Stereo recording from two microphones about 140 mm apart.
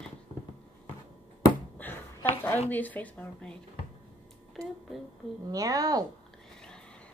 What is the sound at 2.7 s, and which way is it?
Speech, 10° left (ahead or behind).